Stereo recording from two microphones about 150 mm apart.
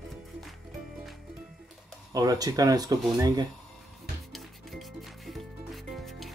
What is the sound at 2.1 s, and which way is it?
Speech, 25° right (ahead or behind).